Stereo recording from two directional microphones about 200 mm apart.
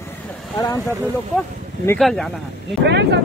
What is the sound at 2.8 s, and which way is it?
Speech, 60° right (ahead or behind).